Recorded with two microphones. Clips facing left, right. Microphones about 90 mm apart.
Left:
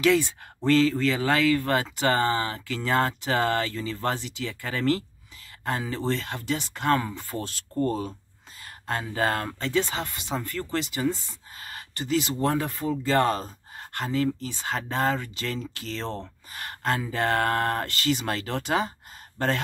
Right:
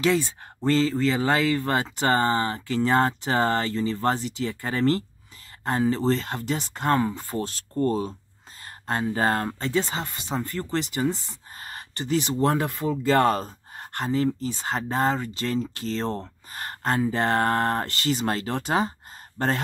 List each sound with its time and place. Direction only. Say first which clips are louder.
0.7 s speech: left 1 dB; 25° right (ahead or behind)
2.0 s speech: right 3 dB; 30° right (ahead or behind)
8.8 s speech: right 3 dB; 30° right (ahead or behind)
10.9 s speech: right 1 dB; 45° right (ahead or behind)
18.7 s a sound: right 1 dB; 35° right (ahead or behind)